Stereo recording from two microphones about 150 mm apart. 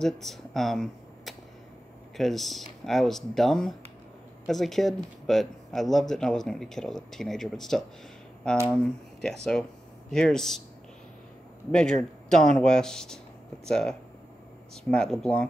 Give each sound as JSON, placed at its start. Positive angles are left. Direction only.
{"t": 0.0, "sound": "speech", "side_deg": 0}
{"t": 11.7, "sound": "a man's voice", "side_deg": 5}